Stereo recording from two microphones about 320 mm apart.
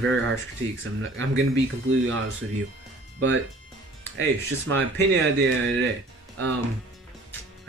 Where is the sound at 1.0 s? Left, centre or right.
Right.